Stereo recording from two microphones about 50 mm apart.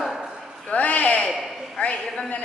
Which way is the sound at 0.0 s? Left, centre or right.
Centre.